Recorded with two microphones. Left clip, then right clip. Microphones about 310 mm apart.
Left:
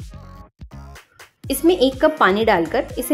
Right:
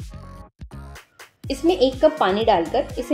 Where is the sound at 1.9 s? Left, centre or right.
Left.